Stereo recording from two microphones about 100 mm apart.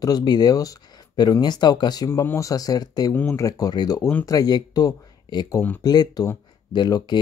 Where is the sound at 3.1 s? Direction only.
20° left (ahead or behind).